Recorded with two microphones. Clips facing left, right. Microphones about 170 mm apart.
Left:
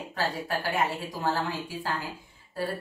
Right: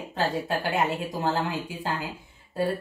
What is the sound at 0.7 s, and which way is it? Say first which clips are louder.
Speech: right 3 dB; 20° right (ahead or behind).